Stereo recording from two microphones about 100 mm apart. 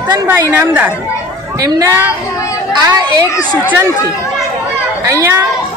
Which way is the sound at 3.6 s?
15° right (ahead or behind).